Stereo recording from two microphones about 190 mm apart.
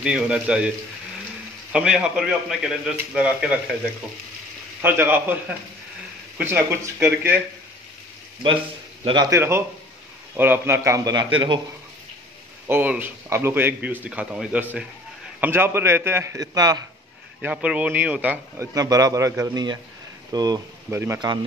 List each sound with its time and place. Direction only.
0.0 s speech: 5° right (ahead or behind)
1.7 s speech: 5° right (ahead or behind)
4.8 s a man's voice: 10° right (ahead or behind)
9.0 s a man's voice: 20° right (ahead or behind)
12.6 s a man's voice: 10° right (ahead or behind)
17.4 s a man's voice: 5° right (ahead or behind)